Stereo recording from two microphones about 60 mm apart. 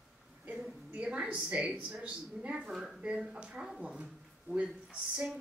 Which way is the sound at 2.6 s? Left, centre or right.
Centre.